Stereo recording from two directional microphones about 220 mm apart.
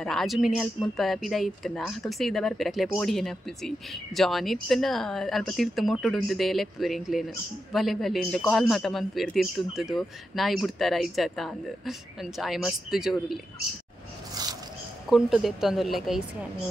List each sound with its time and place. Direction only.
0.0 s speech: centre (ahead or behind)
14.4 s a sound: 20° right (ahead or behind)
15.0 s speech: centre (ahead or behind)